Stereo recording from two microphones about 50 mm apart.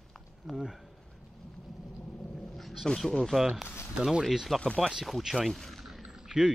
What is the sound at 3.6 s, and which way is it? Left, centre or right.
Speech, left.